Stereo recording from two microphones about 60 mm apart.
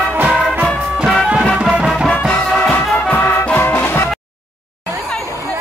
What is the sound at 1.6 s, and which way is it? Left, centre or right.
Music, centre.